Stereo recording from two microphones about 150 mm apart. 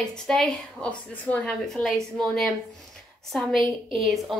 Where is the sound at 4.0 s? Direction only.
Centre (ahead or behind).